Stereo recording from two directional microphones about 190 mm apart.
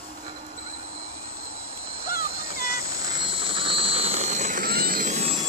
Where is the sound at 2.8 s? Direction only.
20° right (ahead or behind); by 5.4 s 35° right (ahead or behind).